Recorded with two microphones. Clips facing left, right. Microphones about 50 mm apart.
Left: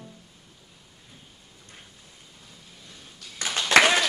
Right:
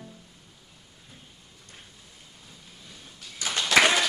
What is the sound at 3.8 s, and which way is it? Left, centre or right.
Applause, centre.